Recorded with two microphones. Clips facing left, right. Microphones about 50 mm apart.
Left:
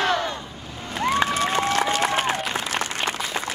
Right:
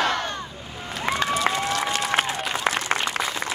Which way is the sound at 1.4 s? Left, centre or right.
Left.